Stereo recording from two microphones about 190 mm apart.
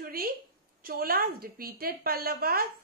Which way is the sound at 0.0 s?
50° right (ahead or behind).